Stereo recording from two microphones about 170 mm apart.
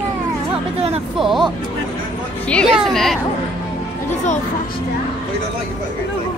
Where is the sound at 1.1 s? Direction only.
Centre (ahead or behind).